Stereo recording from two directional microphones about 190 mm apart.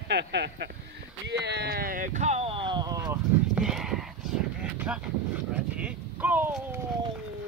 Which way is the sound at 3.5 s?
Centre (ahead or behind).